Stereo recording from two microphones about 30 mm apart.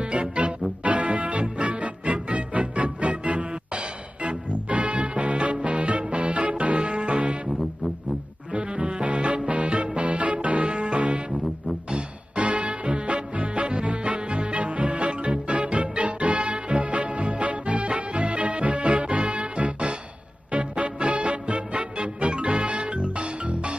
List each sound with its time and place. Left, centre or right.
0.0 s music: right
8.5 s music: right
10.7 s music: right
12.4 s music: right
20.5 s music: right